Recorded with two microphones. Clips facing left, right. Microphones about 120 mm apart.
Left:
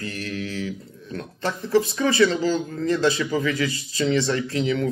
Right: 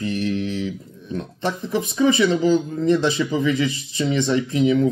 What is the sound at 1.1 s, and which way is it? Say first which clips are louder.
Speech: right 3 dB; 15° right (ahead or behind).